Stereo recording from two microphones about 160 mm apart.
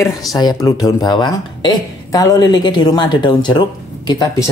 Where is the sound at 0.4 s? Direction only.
25° left (ahead or behind).